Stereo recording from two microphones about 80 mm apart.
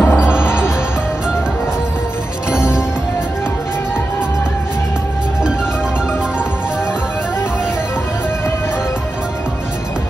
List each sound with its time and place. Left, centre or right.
0.0 s music: left
2.5 s music: centre